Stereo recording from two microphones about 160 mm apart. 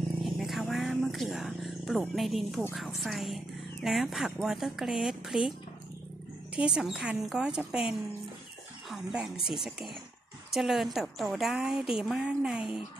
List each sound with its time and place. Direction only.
0.2 s a sound: centre (ahead or behind)
2.7 s speech: centre (ahead or behind)
6.5 s speech: 5° right (ahead or behind)
8.9 s speech: 5° right (ahead or behind)